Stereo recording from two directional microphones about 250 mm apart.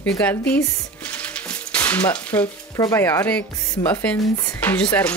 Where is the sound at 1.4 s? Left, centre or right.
Centre.